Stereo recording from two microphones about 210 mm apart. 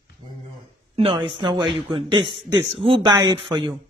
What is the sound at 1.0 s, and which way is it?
A man's voice, 25° right (ahead or behind).